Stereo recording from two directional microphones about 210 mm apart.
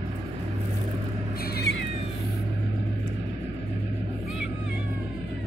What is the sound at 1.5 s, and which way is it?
Cat, 55° left (ahead or behind).